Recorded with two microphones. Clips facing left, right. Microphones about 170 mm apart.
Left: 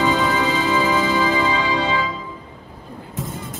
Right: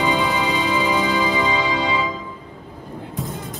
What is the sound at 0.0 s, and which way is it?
Music, 15° right (ahead or behind).